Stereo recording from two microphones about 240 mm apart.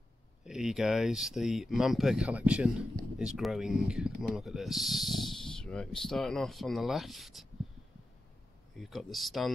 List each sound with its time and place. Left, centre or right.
0.5 s speech: centre
8.7 s speech: centre